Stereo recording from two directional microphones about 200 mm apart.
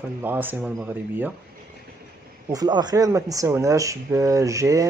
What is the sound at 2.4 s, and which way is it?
Speech, 20° right (ahead or behind).